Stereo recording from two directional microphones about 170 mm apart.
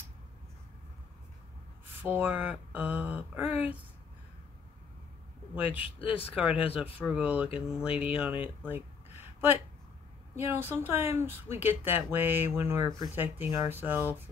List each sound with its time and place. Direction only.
2.0 s speech: 10° right (ahead or behind)
5.5 s speech: 10° right (ahead or behind)
5.9 s speech: 30° left (ahead or behind)
6.4 s speech: 10° right (ahead or behind)